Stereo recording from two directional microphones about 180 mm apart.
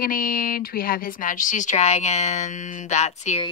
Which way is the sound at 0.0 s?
50° left (ahead or behind).